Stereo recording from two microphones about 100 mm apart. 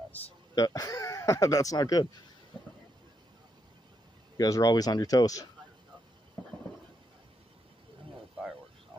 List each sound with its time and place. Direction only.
0.6 s speech: 35° left (ahead or behind)
4.4 s speech: 35° left (ahead or behind)